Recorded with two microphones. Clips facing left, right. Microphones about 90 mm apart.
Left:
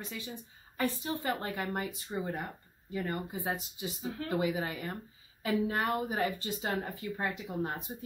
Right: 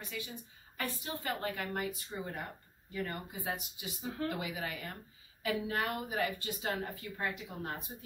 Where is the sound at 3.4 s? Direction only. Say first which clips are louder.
Left 4 dB; 30° left (ahead or behind).